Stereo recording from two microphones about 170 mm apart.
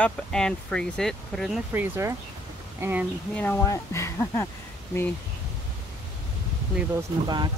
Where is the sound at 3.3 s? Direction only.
10° left (ahead or behind).